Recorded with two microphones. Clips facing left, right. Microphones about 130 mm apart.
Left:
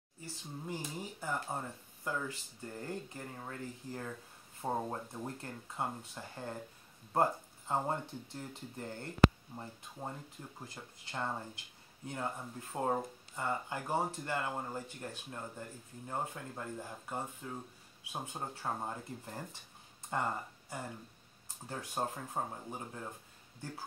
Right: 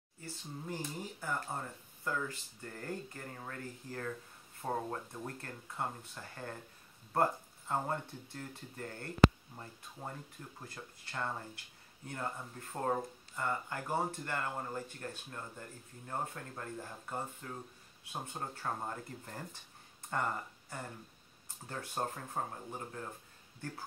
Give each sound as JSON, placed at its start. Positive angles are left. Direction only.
{"t": 0.2, "sound": "speech", "side_deg": 15}